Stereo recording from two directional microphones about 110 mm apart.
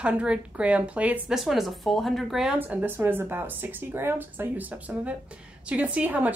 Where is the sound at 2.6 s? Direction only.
15° right (ahead or behind).